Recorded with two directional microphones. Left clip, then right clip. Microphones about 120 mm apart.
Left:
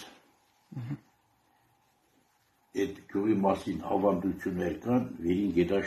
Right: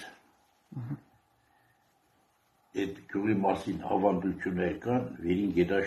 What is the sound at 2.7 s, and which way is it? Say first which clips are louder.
Speech: left 2 dB; 25° left (ahead or behind).